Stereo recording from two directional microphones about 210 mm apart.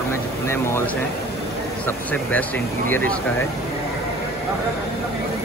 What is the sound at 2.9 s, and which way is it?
Speech, 10° left (ahead or behind).